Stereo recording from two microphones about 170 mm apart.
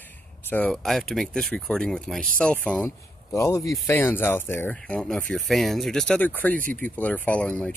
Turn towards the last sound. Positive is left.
turn(degrees=10)  # may be behind; listen again after turning